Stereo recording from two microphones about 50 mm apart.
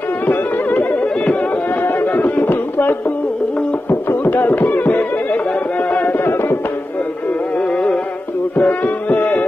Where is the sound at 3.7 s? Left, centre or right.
Left.